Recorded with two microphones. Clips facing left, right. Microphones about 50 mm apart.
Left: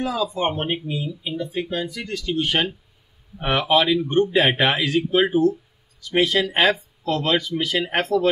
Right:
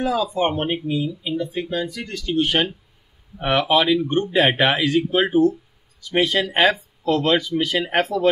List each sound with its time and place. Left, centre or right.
0.4 s speech: centre